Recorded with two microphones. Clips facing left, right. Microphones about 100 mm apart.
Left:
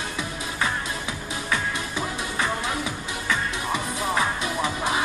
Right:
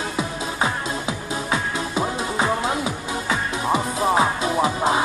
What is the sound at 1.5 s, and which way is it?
Music, 25° right (ahead or behind).